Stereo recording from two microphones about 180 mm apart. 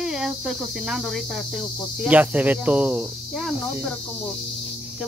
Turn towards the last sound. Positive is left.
turn(degrees=0)  # may be behind; listen again after turning